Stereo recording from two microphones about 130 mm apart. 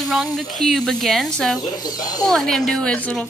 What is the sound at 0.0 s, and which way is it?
Speech, centre (ahead or behind).